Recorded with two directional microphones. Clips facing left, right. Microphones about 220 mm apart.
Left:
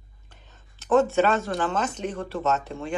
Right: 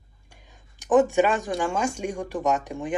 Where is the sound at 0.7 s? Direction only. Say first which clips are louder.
Right 1 dB; 15° right (ahead or behind).